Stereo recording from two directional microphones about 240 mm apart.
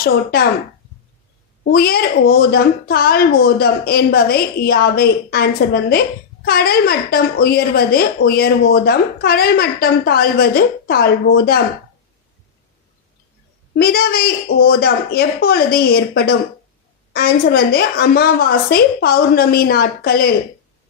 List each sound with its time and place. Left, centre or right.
0.0 s a woman's voice: left
1.6 s a woman's voice: left
13.7 s a woman's voice: left